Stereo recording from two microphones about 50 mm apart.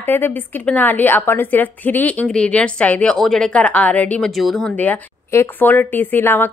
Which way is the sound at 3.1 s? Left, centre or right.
Centre.